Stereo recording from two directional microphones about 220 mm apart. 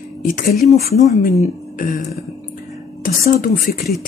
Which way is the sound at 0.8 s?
35° left (ahead or behind).